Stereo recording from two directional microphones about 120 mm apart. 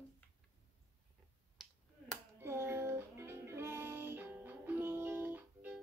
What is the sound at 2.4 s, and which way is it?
Music, 20° right (ahead or behind).